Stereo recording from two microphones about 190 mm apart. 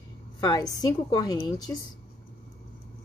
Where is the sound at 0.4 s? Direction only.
20° left (ahead or behind).